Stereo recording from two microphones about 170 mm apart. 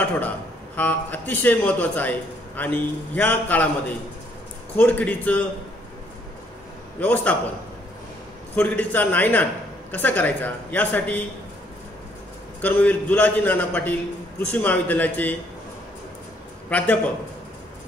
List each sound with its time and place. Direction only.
0.7 s a man's voice: 10° left (ahead or behind)
4.7 s a man's voice: 10° left (ahead or behind)
7.0 s a man's voice: 10° left (ahead or behind)
8.5 s a man's voice: 10° left (ahead or behind)
12.6 s a man's voice: 10° left (ahead or behind)
16.6 s a man's voice: 10° left (ahead or behind)